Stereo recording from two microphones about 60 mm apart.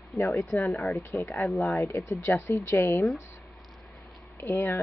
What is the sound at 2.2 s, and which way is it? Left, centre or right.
Speech, left.